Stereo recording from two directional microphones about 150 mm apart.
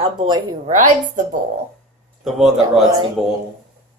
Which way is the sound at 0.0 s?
35° right (ahead or behind).